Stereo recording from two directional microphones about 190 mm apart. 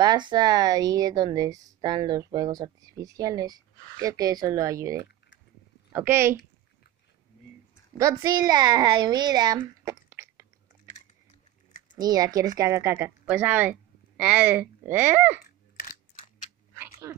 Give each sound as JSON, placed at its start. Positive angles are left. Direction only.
{"t": 0.0, "sound": "a woman's voice", "side_deg": -25}
{"t": 8.0, "sound": "a child's voice", "side_deg": -20}
{"t": 11.9, "sound": "a woman's voice", "side_deg": -20}
{"t": 15.7, "sound": "a sound", "side_deg": 45}
{"t": 17.0, "sound": "frog", "side_deg": -15}